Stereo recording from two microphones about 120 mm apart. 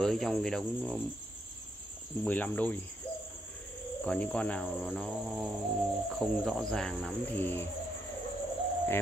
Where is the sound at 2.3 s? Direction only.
15° left (ahead or behind).